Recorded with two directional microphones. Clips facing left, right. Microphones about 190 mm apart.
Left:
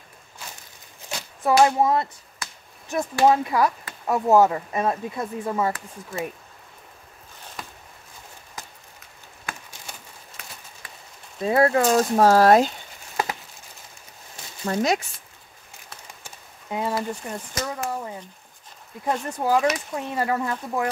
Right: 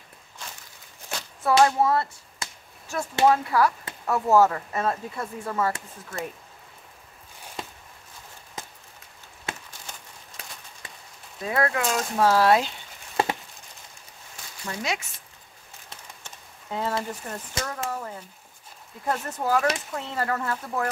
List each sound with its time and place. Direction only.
1.4 s speech: 15° left (ahead or behind)
2.4 s finger snapping: 25° right (ahead or behind)
2.9 s speech: 20° left (ahead or behind)
7.6 s a sound: 25° right (ahead or behind)
9.5 s a sound: 25° right (ahead or behind)
11.4 s speech: 30° left (ahead or behind)
13.2 s a sound: 30° right (ahead or behind)
14.6 s speech: 45° left (ahead or behind)
16.3 s speech: 10° left (ahead or behind)